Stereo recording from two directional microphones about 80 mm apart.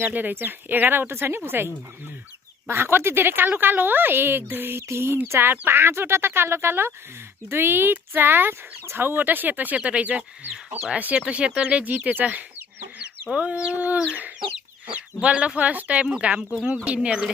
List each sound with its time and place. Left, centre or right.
0.0 s speech: right
2.7 s speech: right; by 17.3 s centre